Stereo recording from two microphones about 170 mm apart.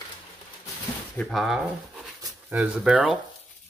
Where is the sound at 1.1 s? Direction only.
Centre (ahead or behind).